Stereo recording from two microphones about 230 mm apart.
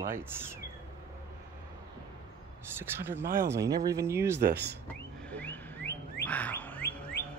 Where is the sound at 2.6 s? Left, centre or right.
Centre.